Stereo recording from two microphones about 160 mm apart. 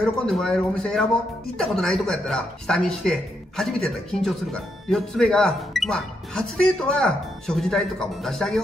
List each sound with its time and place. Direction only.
0.0 s speech: 5° left (ahead or behind)